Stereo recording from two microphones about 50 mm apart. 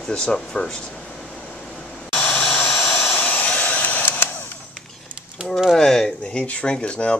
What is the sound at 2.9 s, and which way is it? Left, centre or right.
Hair dryer, left.